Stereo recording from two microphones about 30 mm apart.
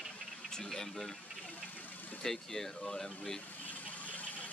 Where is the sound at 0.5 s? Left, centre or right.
Centre.